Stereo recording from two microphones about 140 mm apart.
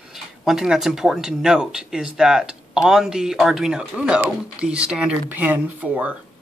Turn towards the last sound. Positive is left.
turn(degrees=-10)  # may be behind; listen again after turning